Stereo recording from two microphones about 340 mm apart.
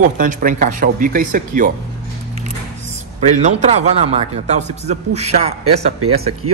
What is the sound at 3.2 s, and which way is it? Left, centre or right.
A man's voice, centre.